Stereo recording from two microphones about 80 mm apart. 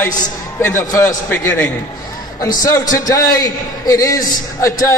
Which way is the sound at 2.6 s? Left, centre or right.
Left.